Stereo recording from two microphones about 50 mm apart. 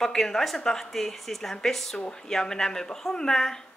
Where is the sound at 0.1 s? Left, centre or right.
Centre.